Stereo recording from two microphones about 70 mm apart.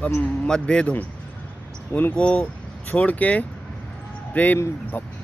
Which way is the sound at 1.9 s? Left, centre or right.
Left.